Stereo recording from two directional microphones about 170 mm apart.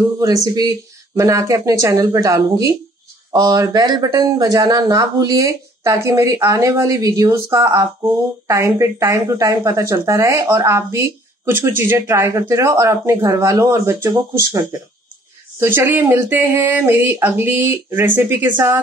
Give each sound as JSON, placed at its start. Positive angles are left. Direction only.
{"t": 0.2, "sound": "a woman's voice", "side_deg": -20}
{"t": 15.6, "sound": "a woman's voice", "side_deg": -15}